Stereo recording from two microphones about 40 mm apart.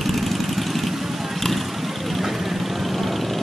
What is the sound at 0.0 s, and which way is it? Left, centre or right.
Vehicle, centre.